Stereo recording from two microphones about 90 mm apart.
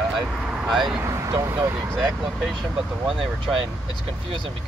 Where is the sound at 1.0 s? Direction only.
35° right (ahead or behind).